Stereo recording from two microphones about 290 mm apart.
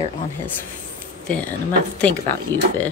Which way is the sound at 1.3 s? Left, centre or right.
Centre.